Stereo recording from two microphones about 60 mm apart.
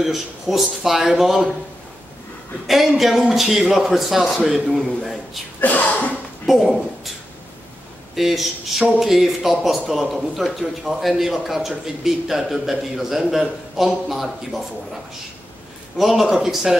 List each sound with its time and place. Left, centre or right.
0.0 s a man's voice: centre
2.6 s a man's voice: centre
5.6 s speech: left
6.4 s a man's voice: centre
8.2 s a man's voice: centre
16.0 s a man's voice: centre